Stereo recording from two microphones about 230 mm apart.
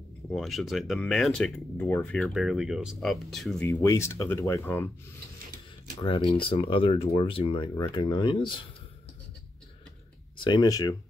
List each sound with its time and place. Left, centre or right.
0.3 s speech: centre
3.6 s speech: centre
6.4 s speech: left
10.3 s speech: centre